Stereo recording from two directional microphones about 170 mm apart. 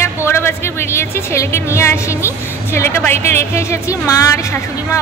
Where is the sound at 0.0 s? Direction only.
15° left (ahead or behind).